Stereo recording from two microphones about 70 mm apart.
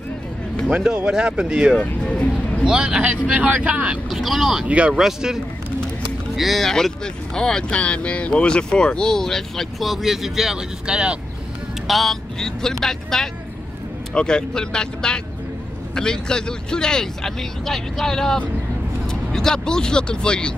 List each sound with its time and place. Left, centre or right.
0.7 s speech: centre
1.8 s speech: centre
2.6 s speech: centre
4.1 s speech: centre
4.6 s speech: centre
11.9 s speech: centre